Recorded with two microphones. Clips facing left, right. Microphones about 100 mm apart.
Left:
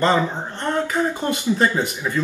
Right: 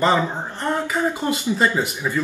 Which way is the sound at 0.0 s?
10° right (ahead or behind).